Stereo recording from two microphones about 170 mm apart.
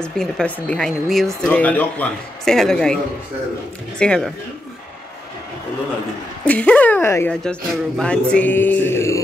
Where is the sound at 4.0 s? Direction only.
5° left (ahead or behind).